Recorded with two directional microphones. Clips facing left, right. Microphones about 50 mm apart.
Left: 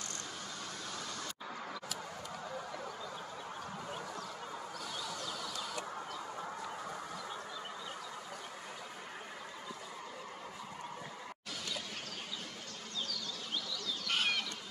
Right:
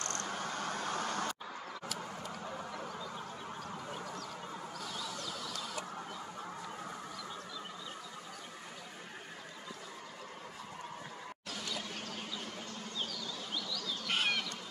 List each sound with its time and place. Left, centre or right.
0.0 s cricket: right
0.3 s vehicle: right
14.0 s bird: centre